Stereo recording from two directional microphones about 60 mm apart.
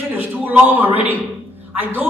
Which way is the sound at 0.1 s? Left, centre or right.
Right.